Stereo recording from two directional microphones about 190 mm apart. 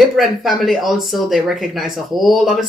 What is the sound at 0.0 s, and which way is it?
Speech, centre (ahead or behind).